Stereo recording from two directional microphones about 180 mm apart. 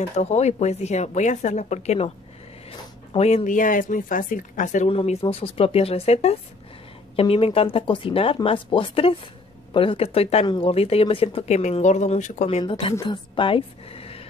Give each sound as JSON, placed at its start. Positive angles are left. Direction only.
{"t": 0.2, "sound": "speech", "side_deg": 40}
{"t": 4.8, "sound": "a woman's voice", "side_deg": 35}